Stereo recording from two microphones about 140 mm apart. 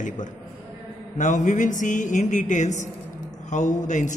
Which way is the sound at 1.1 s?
65° left (ahead or behind).